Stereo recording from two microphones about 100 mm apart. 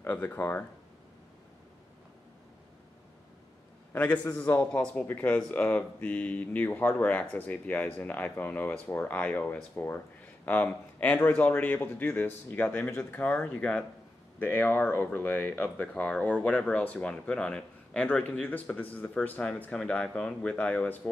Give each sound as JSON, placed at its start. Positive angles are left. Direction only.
{"t": 0.0, "sound": "speech", "side_deg": 20}
{"t": 3.9, "sound": "speech", "side_deg": 15}